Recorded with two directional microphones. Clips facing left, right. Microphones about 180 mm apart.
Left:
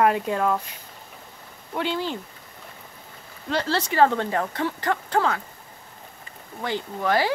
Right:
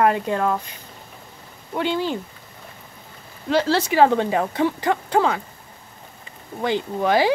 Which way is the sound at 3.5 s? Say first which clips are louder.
Right 5 dB; 10° right (ahead or behind).